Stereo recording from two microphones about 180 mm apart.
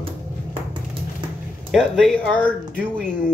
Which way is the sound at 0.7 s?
25° right (ahead or behind).